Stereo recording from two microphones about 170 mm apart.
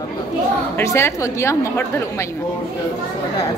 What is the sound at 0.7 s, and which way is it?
A woman's voice, 15° left (ahead or behind).